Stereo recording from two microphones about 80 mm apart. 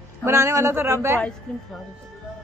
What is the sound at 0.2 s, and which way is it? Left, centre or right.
Speech, right.